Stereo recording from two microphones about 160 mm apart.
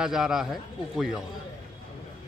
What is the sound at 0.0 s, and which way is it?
Speech, 5° right (ahead or behind).